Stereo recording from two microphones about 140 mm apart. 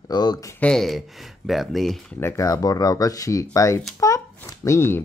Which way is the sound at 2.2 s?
25° left (ahead or behind).